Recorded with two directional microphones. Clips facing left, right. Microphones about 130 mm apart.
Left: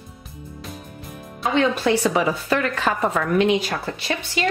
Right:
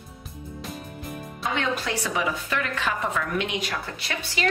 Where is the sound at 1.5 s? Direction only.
30° left (ahead or behind).